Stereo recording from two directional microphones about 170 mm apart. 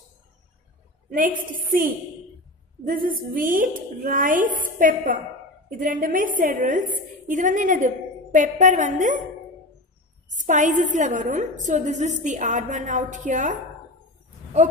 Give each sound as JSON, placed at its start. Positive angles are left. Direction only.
{"t": 1.1, "sound": "a woman's voice", "side_deg": -50}
{"t": 2.9, "sound": "a woman's voice", "side_deg": -55}
{"t": 10.3, "sound": "a woman's voice", "side_deg": -50}